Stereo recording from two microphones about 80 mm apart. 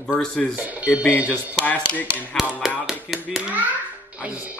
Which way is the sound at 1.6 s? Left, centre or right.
Left.